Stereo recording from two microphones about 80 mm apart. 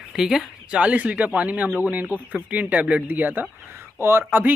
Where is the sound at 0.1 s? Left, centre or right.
Centre.